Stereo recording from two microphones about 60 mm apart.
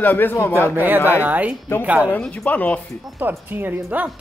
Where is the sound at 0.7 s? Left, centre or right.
Right.